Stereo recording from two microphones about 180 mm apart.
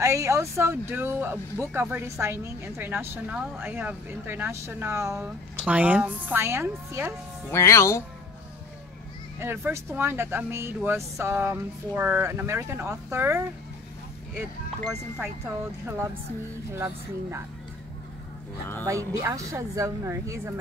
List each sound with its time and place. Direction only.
0.0 s speech: 15° right (ahead or behind)
7.5 s speech: 15° left (ahead or behind)
9.4 s speech: 15° right (ahead or behind)
14.9 s speech: centre (ahead or behind)
16.7 s speech: 15° right (ahead or behind)
18.9 s speech: 15° right (ahead or behind)